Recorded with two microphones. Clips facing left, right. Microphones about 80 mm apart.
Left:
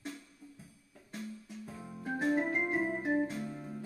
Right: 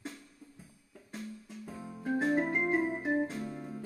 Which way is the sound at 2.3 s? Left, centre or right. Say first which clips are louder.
Even; centre.